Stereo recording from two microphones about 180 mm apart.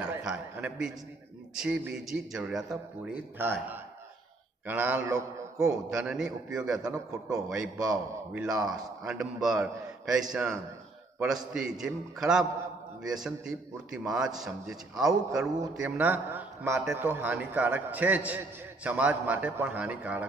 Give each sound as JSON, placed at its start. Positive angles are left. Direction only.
{"t": 0.0, "sound": "a sound", "side_deg": -5}
{"t": 1.5, "sound": "a man's voice", "side_deg": -5}
{"t": 4.6, "sound": "a man's voice", "side_deg": -10}
{"t": 7.7, "sound": "a man's voice", "side_deg": -20}
{"t": 8.3, "sound": "a man's voice", "side_deg": -5}